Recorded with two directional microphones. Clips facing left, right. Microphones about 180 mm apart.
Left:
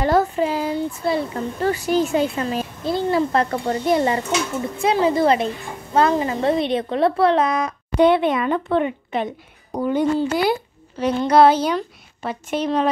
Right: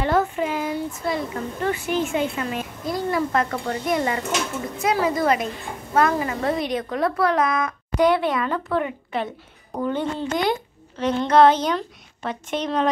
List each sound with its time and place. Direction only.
0.0 s a woman's voice: 35° left (ahead or behind); by 12.8 s 5° left (ahead or behind)